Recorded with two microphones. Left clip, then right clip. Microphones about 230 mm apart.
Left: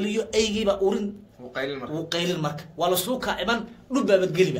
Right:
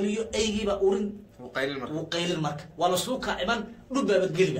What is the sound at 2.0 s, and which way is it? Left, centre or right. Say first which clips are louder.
Speech: left 3 dB; left.